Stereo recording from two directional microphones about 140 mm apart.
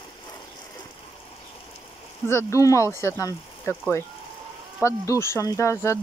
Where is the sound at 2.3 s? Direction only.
20° left (ahead or behind).